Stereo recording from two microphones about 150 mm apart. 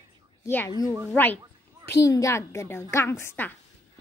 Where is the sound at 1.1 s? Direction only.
15° left (ahead or behind).